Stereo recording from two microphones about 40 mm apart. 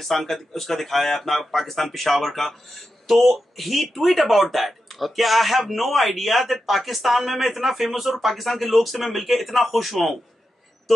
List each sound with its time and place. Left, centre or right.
0.0 s speech: centre